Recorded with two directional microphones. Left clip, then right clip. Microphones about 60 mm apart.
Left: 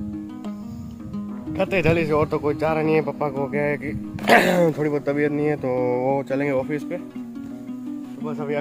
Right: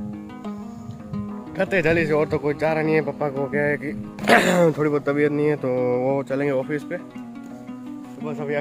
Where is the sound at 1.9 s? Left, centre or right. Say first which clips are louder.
Even; centre.